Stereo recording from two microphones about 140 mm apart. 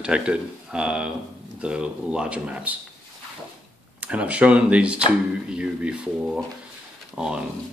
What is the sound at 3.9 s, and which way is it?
Speech, 10° right (ahead or behind).